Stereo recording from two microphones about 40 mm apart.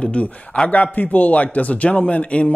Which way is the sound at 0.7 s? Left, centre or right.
Left.